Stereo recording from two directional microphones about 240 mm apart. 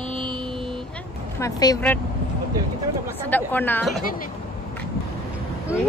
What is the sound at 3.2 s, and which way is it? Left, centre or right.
Speech, centre.